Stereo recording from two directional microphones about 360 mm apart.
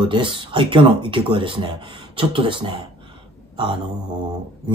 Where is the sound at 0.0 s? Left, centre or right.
Centre.